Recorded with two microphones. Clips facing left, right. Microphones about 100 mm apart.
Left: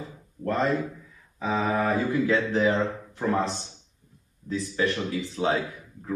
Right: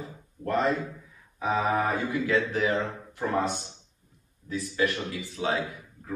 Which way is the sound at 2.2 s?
30° left (ahead or behind).